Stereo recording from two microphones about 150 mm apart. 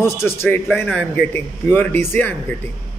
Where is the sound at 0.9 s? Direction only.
5° left (ahead or behind).